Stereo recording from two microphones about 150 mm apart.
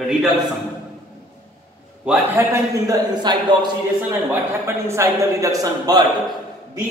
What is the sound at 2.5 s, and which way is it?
Speech, 25° right (ahead or behind).